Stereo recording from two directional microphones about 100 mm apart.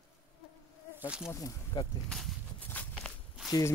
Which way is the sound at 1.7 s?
45° left (ahead or behind).